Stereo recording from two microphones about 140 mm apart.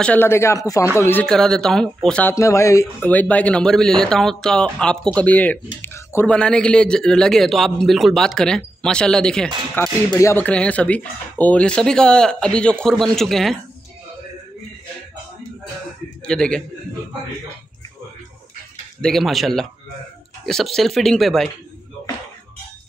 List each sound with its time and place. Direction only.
0.0 s speech: 15° left (ahead or behind)
1.2 s speech: 5° left (ahead or behind)
2.3 s speech: 20° left (ahead or behind)
3.1 s speech: 10° left (ahead or behind)
9.8 s speech: 15° left (ahead or behind); by 13.6 s centre (ahead or behind)
16.3 s speech: 5° left (ahead or behind)
18.9 s speech: 5° left (ahead or behind)